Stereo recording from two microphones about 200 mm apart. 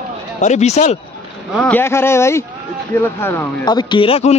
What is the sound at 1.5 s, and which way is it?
A man's voice, 5° left (ahead or behind).